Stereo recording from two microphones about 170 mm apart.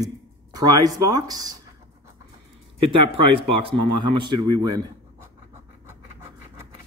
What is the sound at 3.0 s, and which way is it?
Speech, 35° right (ahead or behind).